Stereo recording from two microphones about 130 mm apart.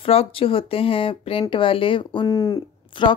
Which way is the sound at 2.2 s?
25° left (ahead or behind).